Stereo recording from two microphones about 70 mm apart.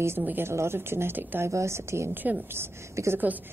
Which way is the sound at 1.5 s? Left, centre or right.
Right.